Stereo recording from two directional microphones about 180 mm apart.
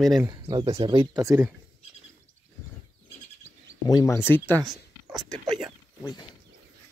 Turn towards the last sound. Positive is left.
turn(degrees=0)  # may be behind; listen again after turning